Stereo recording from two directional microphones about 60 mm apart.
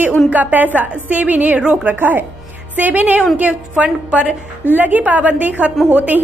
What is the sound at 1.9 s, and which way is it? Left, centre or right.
A woman's voice, right.